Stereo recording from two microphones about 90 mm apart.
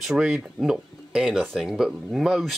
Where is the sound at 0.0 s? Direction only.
5° right (ahead or behind).